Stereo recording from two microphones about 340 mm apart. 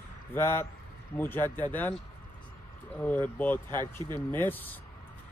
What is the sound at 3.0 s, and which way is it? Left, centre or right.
Speech, centre.